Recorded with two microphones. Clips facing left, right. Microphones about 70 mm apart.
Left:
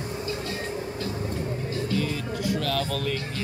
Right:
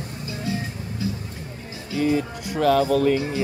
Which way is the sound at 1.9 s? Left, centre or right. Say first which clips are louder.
Right 10 dB; right.